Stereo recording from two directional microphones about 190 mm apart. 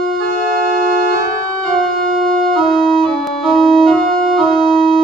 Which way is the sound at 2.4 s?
Centre (ahead or behind).